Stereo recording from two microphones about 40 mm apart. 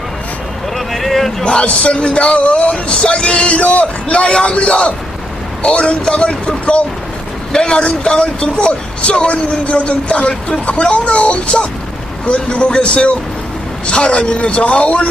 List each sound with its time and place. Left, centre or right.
0.7 s vehicle: centre
1.4 s speech: left